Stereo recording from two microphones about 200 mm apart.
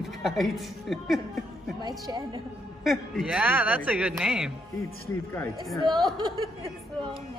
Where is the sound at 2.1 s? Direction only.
20° right (ahead or behind).